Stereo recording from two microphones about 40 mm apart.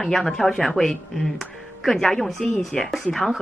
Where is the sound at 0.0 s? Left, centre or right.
Centre.